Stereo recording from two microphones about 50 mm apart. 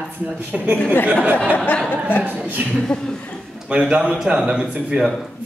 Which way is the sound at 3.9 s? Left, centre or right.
Centre.